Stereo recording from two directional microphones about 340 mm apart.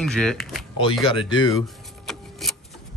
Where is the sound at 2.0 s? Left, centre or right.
Centre.